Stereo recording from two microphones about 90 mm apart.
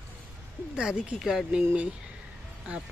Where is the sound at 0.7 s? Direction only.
10° right (ahead or behind).